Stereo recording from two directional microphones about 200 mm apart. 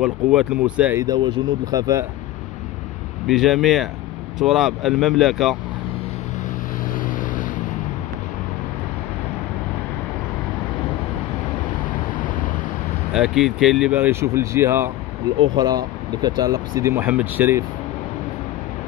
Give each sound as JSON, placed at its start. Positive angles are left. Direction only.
{"t": 0.0, "sound": "speech", "side_deg": -5}
{"t": 1.0, "sound": "speech", "side_deg": -20}
{"t": 3.3, "sound": "speech", "side_deg": 0}
{"t": 6.9, "sound": "vehicle", "side_deg": 40}
{"t": 11.9, "sound": "vehicle", "side_deg": 25}
{"t": 13.1, "sound": "speech", "side_deg": 0}